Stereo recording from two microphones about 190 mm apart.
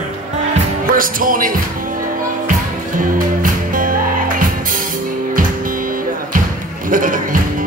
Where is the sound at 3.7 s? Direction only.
45° right (ahead or behind).